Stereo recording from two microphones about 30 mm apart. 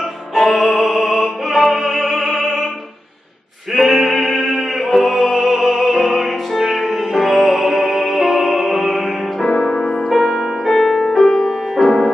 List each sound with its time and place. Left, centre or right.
0.3 s music: centre
3.7 s music: centre
9.7 s music: centre
10.0 s music: centre